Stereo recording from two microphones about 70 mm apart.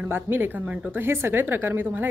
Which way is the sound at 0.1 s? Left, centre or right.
Right.